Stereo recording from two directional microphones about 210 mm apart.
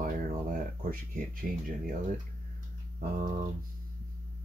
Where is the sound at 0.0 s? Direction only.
40° right (ahead or behind).